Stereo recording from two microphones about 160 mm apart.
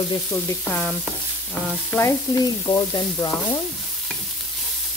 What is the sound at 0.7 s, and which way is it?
Stir, 5° left (ahead or behind).